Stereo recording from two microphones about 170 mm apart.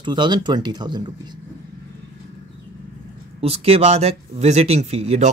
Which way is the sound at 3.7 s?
35° right (ahead or behind).